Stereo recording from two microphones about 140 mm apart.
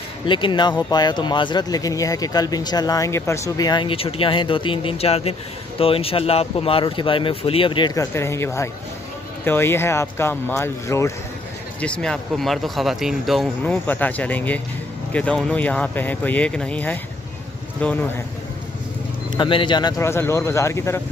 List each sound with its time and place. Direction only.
0.3 s speech: 35° left (ahead or behind)
7.9 s speech: 20° left (ahead or behind)
11.8 s speech: 5° left (ahead or behind)
13.8 s speech: 10° left (ahead or behind)
19.3 s speech: 35° left (ahead or behind); by 21.0 s 20° left (ahead or behind)